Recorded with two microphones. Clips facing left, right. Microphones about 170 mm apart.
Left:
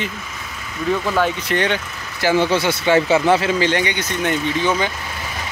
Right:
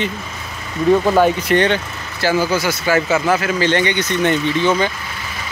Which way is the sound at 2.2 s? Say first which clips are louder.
Even; 25° left (ahead or behind).